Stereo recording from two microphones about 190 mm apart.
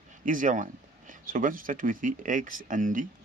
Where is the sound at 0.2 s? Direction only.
45° right (ahead or behind).